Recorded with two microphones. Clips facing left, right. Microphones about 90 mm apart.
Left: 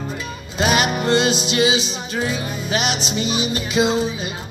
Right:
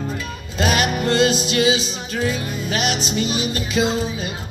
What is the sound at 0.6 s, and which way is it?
Music, 10° left (ahead or behind).